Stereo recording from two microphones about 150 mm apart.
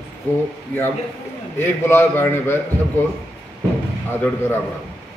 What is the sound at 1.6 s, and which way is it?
A man's voice, 15° left (ahead or behind).